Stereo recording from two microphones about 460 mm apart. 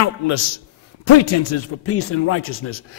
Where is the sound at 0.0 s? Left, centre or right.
Left.